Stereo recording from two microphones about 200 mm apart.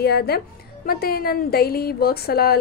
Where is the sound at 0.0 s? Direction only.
50° left (ahead or behind).